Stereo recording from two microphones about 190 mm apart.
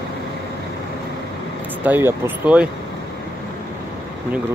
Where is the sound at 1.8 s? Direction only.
10° right (ahead or behind).